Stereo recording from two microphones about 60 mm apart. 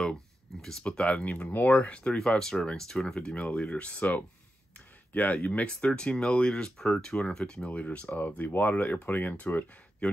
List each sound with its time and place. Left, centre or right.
0.0 s speech: centre
4.7 s speech: left